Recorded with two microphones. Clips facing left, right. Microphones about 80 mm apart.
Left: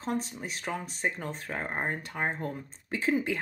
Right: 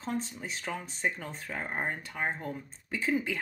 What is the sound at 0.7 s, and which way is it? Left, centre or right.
Speech, left.